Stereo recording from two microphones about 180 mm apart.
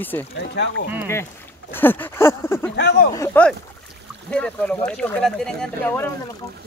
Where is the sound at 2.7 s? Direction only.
70° left (ahead or behind).